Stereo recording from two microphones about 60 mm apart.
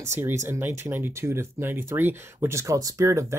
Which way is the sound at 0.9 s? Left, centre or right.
Right.